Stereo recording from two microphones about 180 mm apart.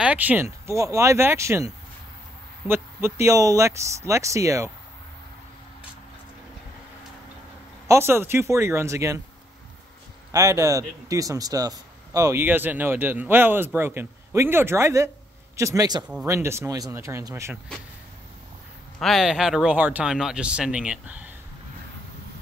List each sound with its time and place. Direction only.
0.0 s speech: 10° right (ahead or behind)
2.7 s speech: 15° right (ahead or behind)
7.9 s speech: 15° right (ahead or behind)
10.3 s speech: 15° right (ahead or behind)
16.0 s speech: 5° right (ahead or behind)
18.9 s speech: centre (ahead or behind)